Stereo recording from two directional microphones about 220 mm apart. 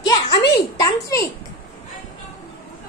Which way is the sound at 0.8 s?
15° left (ahead or behind).